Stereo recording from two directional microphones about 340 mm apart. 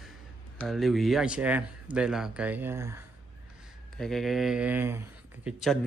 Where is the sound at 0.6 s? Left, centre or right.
Centre.